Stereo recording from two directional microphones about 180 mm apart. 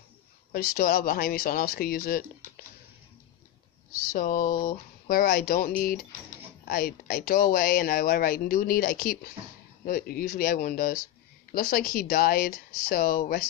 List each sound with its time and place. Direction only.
0.5 s speech: 55° left (ahead or behind)
4.1 s speech: 50° left (ahead or behind)
6.7 s speech: 55° left (ahead or behind)